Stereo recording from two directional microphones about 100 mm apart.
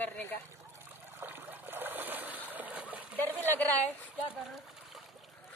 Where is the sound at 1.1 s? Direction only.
20° right (ahead or behind).